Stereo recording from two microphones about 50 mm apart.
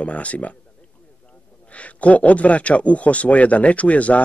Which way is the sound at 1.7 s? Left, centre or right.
Left.